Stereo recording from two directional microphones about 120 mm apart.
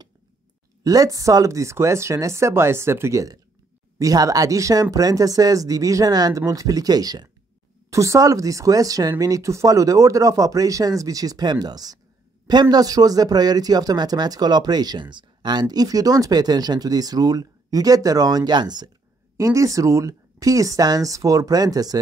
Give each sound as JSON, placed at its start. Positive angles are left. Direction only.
{"t": 0.8, "sound": "a man's voice", "side_deg": -30}
{"t": 19.3, "sound": "speech", "side_deg": -25}